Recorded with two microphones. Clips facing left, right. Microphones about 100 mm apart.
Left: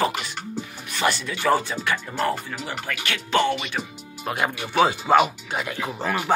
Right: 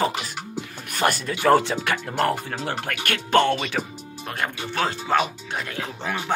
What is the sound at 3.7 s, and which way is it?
Speech, 90° right.